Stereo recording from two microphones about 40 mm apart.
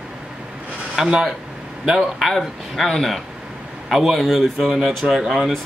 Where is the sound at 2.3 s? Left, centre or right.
Centre.